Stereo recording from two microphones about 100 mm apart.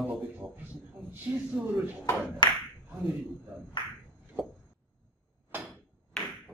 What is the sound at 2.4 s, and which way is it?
Speech, 45° left (ahead or behind).